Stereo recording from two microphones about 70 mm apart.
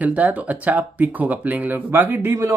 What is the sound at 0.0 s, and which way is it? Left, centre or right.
Speech, right.